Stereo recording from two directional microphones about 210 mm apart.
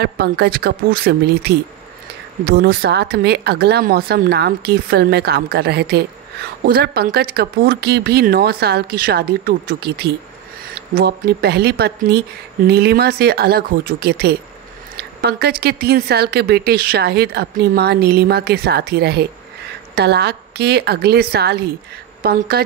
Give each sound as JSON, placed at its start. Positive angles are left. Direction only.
{"t": 0.0, "sound": "speech", "side_deg": -50}